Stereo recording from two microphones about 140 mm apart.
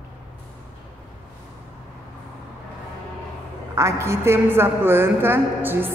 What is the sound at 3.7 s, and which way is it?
A woman's voice, 20° right (ahead or behind).